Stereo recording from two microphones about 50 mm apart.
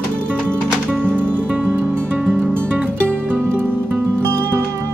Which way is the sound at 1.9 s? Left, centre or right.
Right.